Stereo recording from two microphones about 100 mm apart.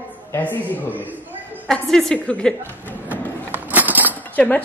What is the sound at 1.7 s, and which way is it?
Speech, 5° left (ahead or behind).